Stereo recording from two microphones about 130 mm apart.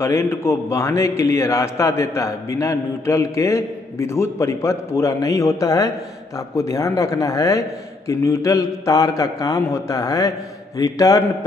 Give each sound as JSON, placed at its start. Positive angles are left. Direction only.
{"t": 0.0, "sound": "a man's voice", "side_deg": 20}